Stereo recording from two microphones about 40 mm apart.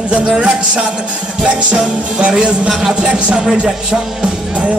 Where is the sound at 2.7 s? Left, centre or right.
Centre.